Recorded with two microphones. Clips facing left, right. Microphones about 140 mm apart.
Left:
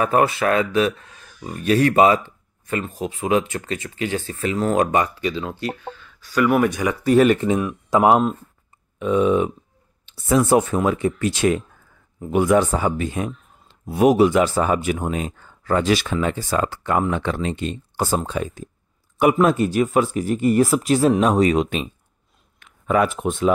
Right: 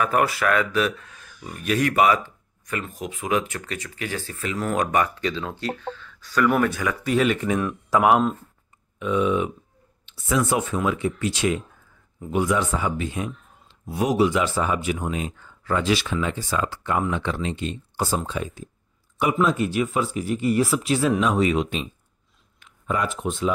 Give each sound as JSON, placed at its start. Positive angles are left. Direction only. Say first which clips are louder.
{"t": 0.0, "sound": "speech", "louder": "left 3 dB", "side_deg": 25}
{"t": 5.0, "sound": "speech", "louder": "left 2 dB", "side_deg": 10}
{"t": 7.1, "sound": "speech", "louder": "left 7 dB", "side_deg": 45}
{"t": 7.9, "sound": "speech", "louder": "left 3 dB", "side_deg": 20}
{"t": 9.0, "sound": "speech", "louder": "left 4 dB", "side_deg": 35}
{"t": 12.5, "sound": "speech", "louder": "left 6 dB", "side_deg": 40}
{"t": 19.5, "sound": "speech", "louder": "left 5 dB", "side_deg": 40}
{"t": 22.6, "sound": "speech", "louder": "left 7 dB", "side_deg": 65}